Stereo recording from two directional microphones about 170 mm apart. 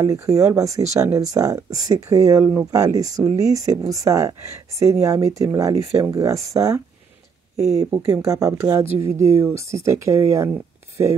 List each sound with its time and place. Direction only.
0.0 s speech: 15° right (ahead or behind)
7.8 s speech: 30° right (ahead or behind)
8.1 s speech: 15° right (ahead or behind)